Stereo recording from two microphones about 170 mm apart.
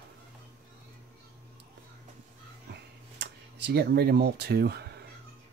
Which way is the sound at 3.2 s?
80° right.